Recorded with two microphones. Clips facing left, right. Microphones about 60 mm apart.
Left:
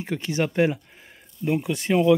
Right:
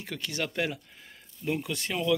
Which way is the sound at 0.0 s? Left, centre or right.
Left.